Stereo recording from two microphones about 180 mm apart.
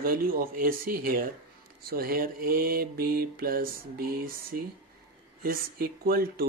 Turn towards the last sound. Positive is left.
turn(degrees=-55)  # may be behind; listen again after turning